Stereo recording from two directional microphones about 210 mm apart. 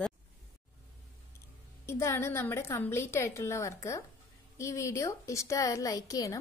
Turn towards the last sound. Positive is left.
turn(degrees=15)  # may be behind; listen again after turning